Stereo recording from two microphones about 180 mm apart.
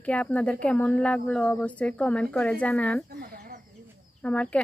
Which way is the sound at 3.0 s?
55° right (ahead or behind).